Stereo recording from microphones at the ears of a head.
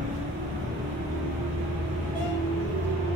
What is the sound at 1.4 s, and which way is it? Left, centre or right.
Vehicle, right.